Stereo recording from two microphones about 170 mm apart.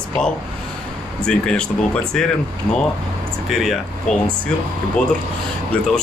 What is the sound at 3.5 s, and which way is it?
Speech, centre (ahead or behind).